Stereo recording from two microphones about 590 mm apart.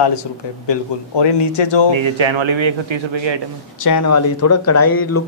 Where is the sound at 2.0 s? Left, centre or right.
Right.